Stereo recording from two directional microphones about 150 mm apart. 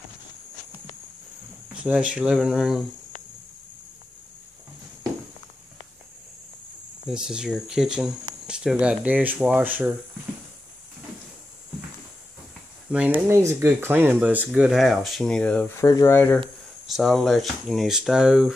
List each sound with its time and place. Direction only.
1.8 s speech: 10° right (ahead or behind)
7.1 s speech: 5° right (ahead or behind)
12.9 s speech: 10° right (ahead or behind); by 15.7 s 10° left (ahead or behind)
15.8 s speech: 20° left (ahead or behind)
16.8 s speech: centre (ahead or behind)